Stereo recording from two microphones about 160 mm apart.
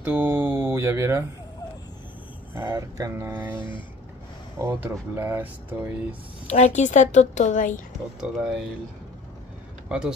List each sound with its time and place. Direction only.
0.0 s speech: 10° right (ahead or behind)
2.5 s speech: 15° right (ahead or behind)
6.4 s a woman's voice: 45° left (ahead or behind)
8.2 s speech: 5° right (ahead or behind)
9.8 s speech: 5° right (ahead or behind)